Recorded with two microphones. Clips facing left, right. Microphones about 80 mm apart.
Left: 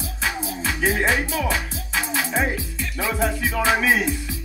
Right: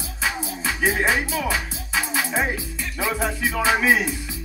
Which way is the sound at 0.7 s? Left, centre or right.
Right.